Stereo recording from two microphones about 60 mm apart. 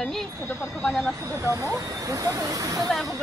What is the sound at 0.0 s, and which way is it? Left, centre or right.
Vehicle, centre.